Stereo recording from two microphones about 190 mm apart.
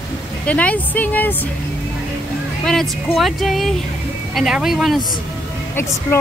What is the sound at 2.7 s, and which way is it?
Speech, centre (ahead or behind).